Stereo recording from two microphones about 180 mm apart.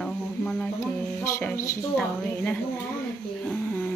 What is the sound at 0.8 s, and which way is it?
Speech, 15° left (ahead or behind).